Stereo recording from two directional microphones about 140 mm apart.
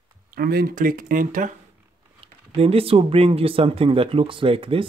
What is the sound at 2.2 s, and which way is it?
Speech, 45° right (ahead or behind).